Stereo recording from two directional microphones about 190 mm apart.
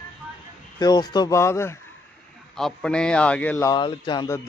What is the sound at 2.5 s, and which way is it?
A man's voice, 5° left (ahead or behind).